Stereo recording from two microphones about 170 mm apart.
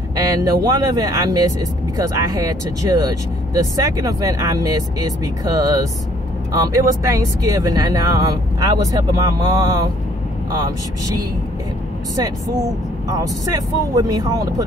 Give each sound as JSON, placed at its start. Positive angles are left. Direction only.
{"t": 0.1, "sound": "speech", "side_deg": -20}
{"t": 13.1, "sound": "speech", "side_deg": -20}